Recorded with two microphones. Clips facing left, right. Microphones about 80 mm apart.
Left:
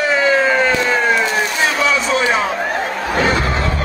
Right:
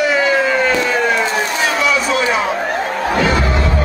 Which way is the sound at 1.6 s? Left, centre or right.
Left.